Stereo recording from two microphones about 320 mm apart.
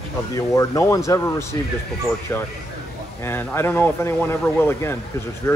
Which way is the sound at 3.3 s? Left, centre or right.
Centre.